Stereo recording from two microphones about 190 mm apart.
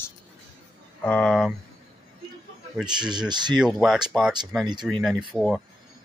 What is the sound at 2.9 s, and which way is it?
Speech, 25° right (ahead or behind).